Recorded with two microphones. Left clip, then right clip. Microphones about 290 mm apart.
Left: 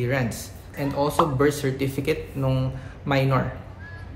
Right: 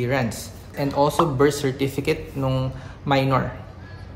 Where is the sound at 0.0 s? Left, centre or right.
Centre.